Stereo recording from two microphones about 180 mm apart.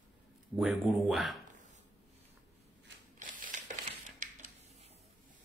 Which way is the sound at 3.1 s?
45° right (ahead or behind).